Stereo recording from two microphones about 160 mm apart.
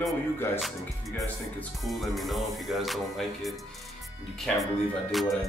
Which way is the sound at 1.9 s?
Centre (ahead or behind).